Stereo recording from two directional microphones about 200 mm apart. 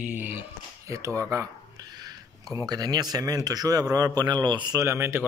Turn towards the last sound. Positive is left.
turn(degrees=-15)  # may be behind; listen again after turning